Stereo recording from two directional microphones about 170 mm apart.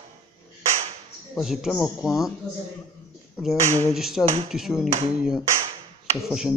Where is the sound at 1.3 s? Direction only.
Centre (ahead or behind).